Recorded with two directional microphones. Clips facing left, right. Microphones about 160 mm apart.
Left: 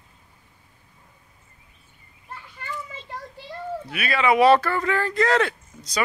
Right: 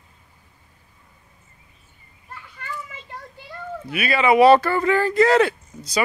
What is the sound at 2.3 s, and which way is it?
Children playing, 30° left (ahead or behind).